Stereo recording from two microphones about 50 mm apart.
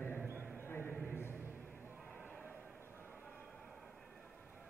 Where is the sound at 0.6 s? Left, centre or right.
Left.